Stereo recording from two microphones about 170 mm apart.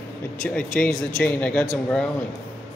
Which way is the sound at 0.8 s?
5° left (ahead or behind).